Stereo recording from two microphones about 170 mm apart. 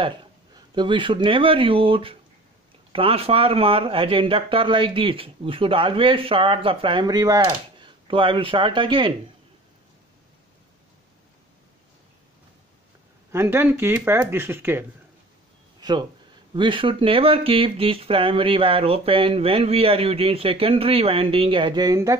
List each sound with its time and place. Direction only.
0.0 s speech: 30° right (ahead or behind)
13.3 s speech: 15° right (ahead or behind)
15.8 s speech: 25° right (ahead or behind)